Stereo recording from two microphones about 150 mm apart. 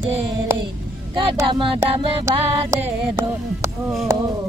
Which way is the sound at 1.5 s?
35° right (ahead or behind).